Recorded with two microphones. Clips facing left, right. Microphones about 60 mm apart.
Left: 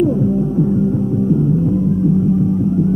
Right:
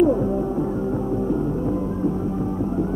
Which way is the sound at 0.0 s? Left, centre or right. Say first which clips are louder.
Left 3 dB; right.